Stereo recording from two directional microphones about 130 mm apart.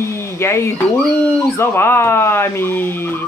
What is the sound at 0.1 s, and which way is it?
Speech, 20° left (ahead or behind).